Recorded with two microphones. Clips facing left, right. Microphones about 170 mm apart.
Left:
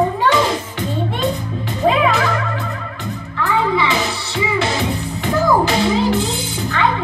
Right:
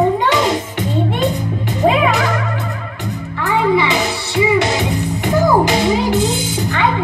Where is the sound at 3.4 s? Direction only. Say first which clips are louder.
Right 3 dB; 20° right (ahead or behind).